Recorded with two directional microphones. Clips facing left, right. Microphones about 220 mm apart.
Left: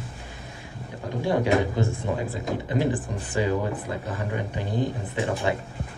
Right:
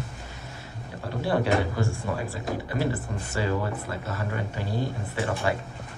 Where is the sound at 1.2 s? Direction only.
15° left (ahead or behind).